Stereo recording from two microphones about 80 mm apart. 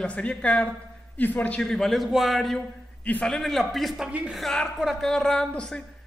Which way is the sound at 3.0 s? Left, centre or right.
Centre.